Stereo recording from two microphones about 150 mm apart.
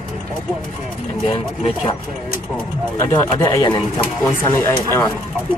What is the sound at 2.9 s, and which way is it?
Speech, 25° left (ahead or behind).